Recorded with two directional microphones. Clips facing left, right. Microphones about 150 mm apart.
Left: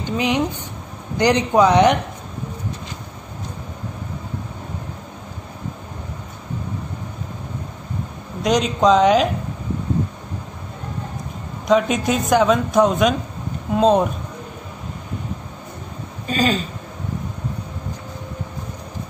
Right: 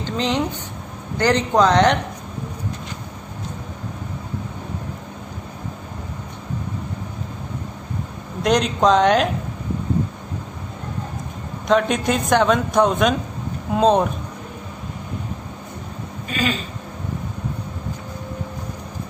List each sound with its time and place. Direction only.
0.0 s speech: 10° left (ahead or behind)
8.4 s a man's voice: centre (ahead or behind)
11.6 s a man's voice: centre (ahead or behind)
16.3 s speech: 35° left (ahead or behind)